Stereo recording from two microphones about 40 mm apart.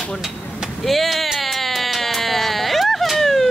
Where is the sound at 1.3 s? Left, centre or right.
Centre.